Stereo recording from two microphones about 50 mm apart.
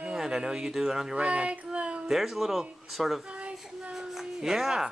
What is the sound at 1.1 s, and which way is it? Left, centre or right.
Speech, right.